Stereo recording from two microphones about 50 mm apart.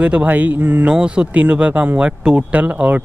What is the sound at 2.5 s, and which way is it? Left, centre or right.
Speech, right.